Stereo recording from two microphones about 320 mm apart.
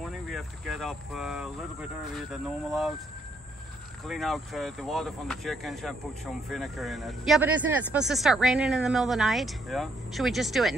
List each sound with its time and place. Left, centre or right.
0.0 s speech: centre
4.0 s speech: centre